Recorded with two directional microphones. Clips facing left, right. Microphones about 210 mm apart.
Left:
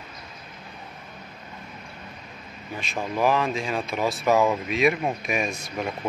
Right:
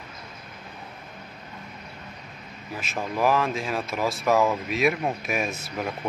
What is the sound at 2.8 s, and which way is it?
Speech, centre (ahead or behind).